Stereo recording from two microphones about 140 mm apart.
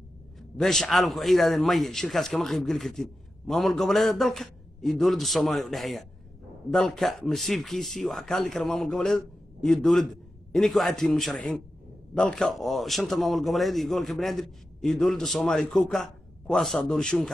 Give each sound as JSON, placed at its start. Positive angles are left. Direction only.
{"t": 0.4, "sound": "a man's voice", "side_deg": 0}